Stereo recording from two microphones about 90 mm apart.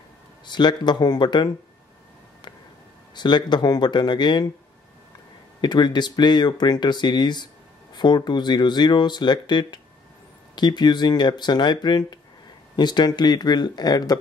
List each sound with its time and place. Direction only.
0.5 s speech: 55° left (ahead or behind)
3.2 s speech: 55° left (ahead or behind)
5.6 s speech: 55° left (ahead or behind)